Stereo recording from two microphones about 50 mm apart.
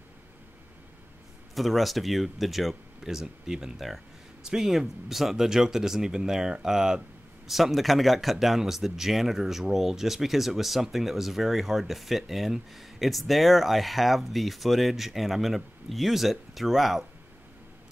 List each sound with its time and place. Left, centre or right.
1.5 s speech: centre
3.7 s speech: centre
4.4 s speech: centre